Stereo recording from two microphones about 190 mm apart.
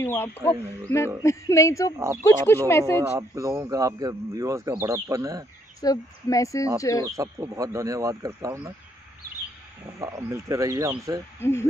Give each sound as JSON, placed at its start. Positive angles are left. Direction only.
{"t": 0.0, "sound": "speech", "side_deg": 15}
{"t": 3.1, "sound": "speech", "side_deg": -15}
{"t": 5.8, "sound": "speech", "side_deg": 20}
{"t": 7.1, "sound": "speech", "side_deg": -15}
{"t": 9.9, "sound": "speech", "side_deg": -15}
{"t": 11.3, "sound": "speech", "side_deg": 10}